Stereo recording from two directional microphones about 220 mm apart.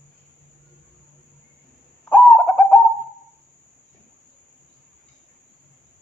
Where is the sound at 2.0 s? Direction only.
15° left (ahead or behind).